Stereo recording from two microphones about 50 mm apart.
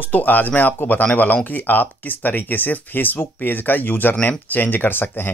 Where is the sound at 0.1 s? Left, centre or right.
Left.